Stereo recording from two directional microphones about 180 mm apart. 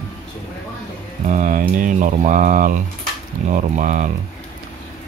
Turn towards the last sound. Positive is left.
turn(degrees=-45)  # may be behind; listen again after turning